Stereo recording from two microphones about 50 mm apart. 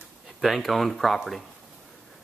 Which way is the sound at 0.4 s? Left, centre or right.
Centre.